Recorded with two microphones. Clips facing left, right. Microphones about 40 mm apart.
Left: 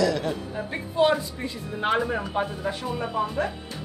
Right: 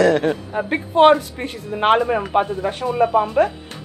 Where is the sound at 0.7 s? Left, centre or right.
Right.